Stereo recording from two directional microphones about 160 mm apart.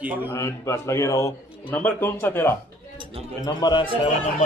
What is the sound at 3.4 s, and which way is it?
Speech, 25° left (ahead or behind).